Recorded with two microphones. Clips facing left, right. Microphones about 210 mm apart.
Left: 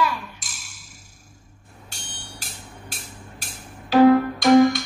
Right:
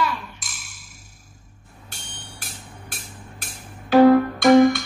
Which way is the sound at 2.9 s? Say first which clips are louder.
Even; 55° right (ahead or behind).